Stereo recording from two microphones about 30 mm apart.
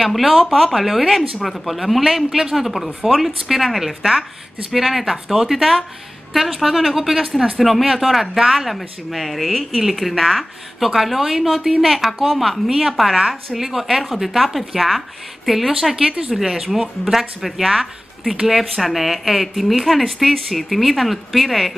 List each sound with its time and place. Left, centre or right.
0.0 s speech: centre
10.8 s speech: centre
12.6 s speech: centre
16.0 s speech: right
16.3 s speech: centre